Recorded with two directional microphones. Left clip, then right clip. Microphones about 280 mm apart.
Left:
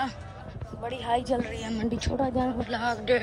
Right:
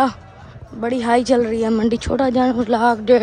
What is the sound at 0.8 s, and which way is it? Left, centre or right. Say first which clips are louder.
A woman's voice: right 11 dB; right.